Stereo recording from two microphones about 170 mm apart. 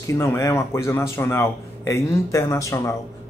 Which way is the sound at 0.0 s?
15° left (ahead or behind).